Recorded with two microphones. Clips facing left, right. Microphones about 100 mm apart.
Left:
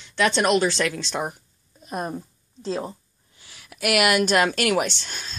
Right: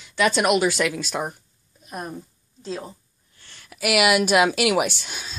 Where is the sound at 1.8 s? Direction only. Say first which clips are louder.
Left 4 dB; 30° left (ahead or behind).